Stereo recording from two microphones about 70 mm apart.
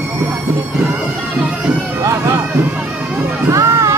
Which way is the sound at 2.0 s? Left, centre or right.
Right.